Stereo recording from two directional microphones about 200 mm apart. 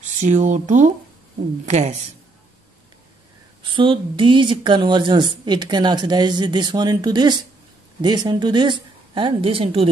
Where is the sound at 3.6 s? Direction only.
25° right (ahead or behind).